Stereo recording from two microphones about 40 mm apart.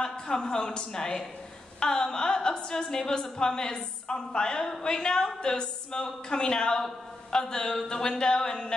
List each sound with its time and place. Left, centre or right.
0.0 s a woman's voice: centre